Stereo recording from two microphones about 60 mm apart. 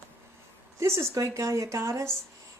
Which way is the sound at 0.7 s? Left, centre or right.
Right.